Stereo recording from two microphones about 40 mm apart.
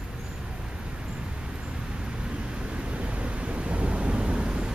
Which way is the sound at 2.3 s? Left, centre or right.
Right.